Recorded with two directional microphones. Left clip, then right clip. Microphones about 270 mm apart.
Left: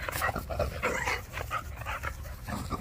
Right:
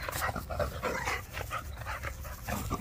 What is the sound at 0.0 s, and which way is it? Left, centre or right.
Dog, centre.